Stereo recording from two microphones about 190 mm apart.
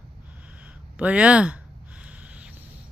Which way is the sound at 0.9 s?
5° right (ahead or behind).